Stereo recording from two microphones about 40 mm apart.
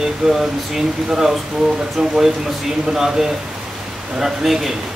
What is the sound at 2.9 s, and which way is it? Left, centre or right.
Speech, centre.